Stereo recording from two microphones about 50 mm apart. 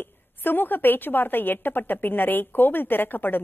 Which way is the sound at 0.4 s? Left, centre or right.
Left.